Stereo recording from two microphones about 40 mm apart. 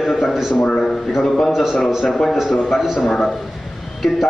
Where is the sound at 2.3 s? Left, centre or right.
Centre.